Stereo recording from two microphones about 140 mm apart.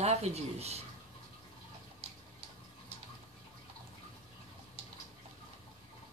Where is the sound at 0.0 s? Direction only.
50° right (ahead or behind).